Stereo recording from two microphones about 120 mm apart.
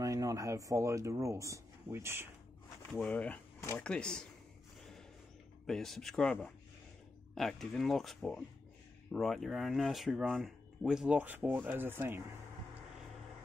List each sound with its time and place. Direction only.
0.0 s speech: 30° right (ahead or behind)
2.9 s speech: 10° left (ahead or behind)
5.7 s speech: centre (ahead or behind)
7.3 s speech: centre (ahead or behind); by 12.2 s 20° right (ahead or behind)